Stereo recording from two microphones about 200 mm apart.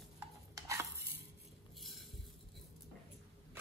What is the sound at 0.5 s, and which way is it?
Stir, 15° right (ahead or behind).